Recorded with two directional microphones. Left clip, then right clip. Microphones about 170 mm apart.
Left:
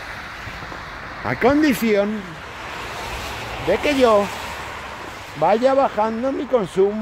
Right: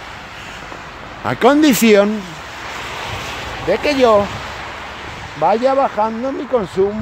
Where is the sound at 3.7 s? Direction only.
5° right (ahead or behind).